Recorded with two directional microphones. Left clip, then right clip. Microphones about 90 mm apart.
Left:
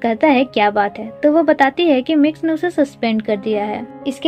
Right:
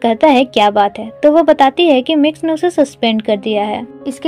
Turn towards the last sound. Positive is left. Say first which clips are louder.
# right 3 dB
turn(degrees=-45)  # may be behind; listen again after turning